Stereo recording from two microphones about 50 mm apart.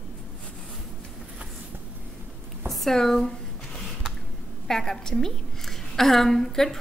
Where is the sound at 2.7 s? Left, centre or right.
Centre.